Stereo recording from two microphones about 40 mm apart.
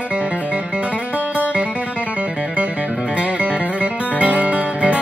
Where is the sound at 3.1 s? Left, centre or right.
Right.